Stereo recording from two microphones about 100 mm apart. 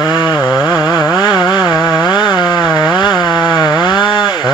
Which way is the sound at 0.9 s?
40° left (ahead or behind).